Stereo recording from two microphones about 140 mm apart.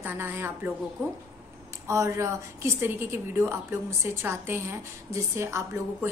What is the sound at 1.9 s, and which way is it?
A woman's voice, 20° right (ahead or behind).